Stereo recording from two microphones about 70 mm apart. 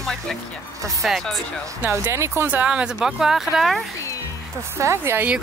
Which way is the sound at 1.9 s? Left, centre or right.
Right.